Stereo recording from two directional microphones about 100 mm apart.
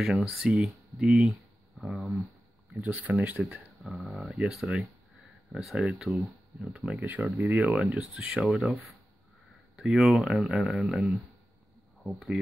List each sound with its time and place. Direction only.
0.0 s speech: 5° right (ahead or behind)
2.7 s speech: 15° right (ahead or behind)
3.3 s speech: 5° right (ahead or behind)
9.8 s speech: 5° right (ahead or behind)